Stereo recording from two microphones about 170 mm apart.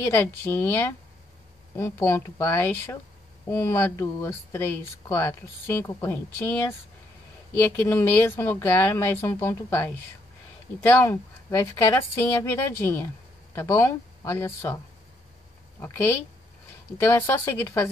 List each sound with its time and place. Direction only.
0.0 s speech: 10° left (ahead or behind)
7.7 s speech: 10° left (ahead or behind)
17.1 s speech: 15° left (ahead or behind)